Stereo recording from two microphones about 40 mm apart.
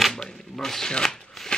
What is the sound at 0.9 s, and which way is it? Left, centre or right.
Shuffling cards, centre.